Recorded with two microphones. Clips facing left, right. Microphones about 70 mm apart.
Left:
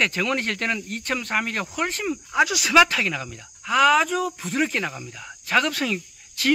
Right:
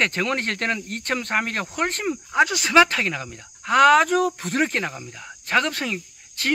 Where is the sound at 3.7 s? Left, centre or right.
Right.